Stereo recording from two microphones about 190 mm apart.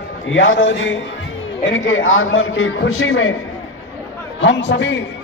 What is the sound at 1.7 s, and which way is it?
A man's voice, 90° left.